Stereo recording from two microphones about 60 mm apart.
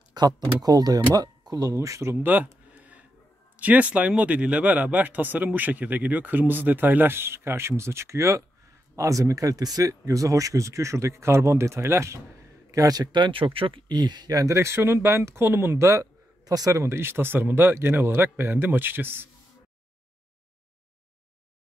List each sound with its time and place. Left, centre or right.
0.6 s speech: right
2.2 s a sound: right
3.5 s speech: right
12.7 s a man's voice: right
14.2 s speech: right
14.5 s speech: right
15.8 s speech: right
16.4 s speech: right
16.8 s a man's voice: right